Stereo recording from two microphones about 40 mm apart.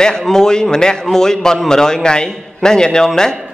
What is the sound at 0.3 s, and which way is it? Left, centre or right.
A man's voice, centre.